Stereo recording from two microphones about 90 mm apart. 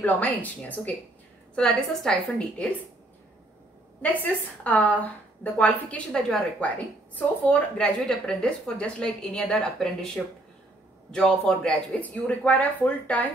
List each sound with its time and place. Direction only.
0.0 s a woman's voice: 15° left (ahead or behind)
4.0 s a woman's voice: 15° left (ahead or behind)